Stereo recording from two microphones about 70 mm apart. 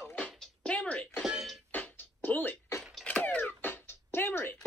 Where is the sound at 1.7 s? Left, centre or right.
Left.